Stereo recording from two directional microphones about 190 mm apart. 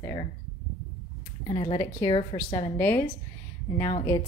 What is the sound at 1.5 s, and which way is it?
A woman's voice, 25° left (ahead or behind).